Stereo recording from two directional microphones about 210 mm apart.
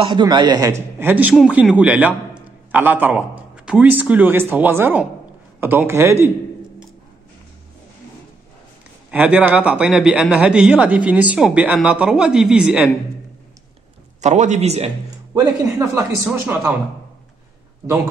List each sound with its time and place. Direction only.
0.0 s a man's voice: 20° right (ahead or behind)
9.1 s speech: 5° right (ahead or behind)
14.2 s a man's voice: 35° right (ahead or behind)
15.3 s a man's voice: 15° right (ahead or behind)